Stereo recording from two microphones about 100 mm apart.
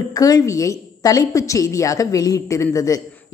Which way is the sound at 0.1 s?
40° left (ahead or behind).